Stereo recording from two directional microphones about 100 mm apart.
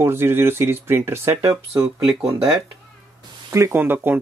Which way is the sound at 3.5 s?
30° right (ahead or behind).